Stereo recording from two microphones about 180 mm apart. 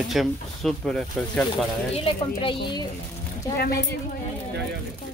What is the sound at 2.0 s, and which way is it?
Speech, 30° left (ahead or behind).